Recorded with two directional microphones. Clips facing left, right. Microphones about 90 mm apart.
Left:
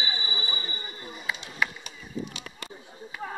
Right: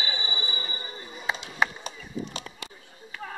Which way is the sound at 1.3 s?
30° right (ahead or behind).